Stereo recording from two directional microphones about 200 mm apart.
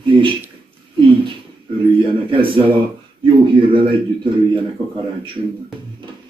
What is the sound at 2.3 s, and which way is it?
Speech, 25° right (ahead or behind).